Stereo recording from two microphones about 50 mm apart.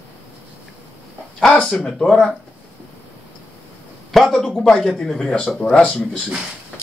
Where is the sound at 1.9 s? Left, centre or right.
Centre.